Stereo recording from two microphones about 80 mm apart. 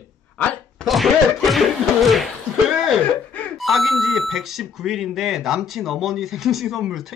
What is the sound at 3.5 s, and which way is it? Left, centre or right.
Speech, centre.